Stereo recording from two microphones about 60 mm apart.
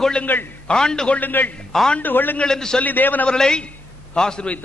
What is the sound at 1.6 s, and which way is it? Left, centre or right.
Speech, centre.